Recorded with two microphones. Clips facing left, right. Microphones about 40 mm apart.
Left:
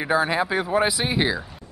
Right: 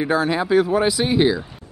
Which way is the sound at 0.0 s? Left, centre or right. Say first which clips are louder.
Right 2 dB; centre.